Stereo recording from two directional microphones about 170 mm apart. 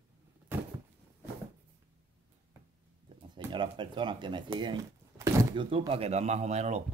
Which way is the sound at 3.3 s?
25° right (ahead or behind).